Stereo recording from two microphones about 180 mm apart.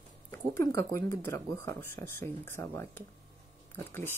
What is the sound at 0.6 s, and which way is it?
Speech, 15° left (ahead or behind).